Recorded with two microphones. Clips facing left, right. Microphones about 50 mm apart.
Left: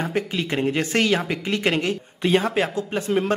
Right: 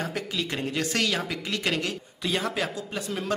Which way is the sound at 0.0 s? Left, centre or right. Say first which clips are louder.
Left 5 dB; left.